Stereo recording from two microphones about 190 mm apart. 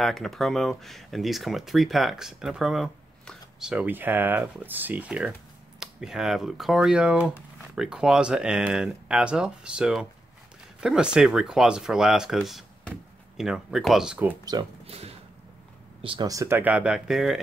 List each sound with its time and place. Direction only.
0.0 s speech: centre (ahead or behind)
14.4 s speech: 20° right (ahead or behind)
14.9 s a sound: 35° right (ahead or behind)
16.0 s speech: 25° right (ahead or behind); by 17.4 s centre (ahead or behind)